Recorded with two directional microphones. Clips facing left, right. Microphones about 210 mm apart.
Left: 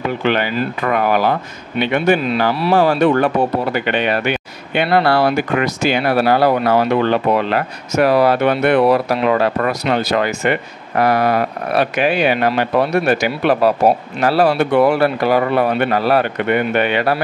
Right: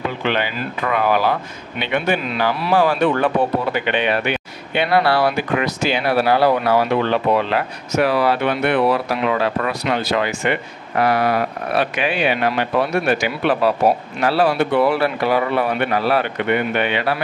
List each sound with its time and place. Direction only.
0.2 s speech: 45° left (ahead or behind)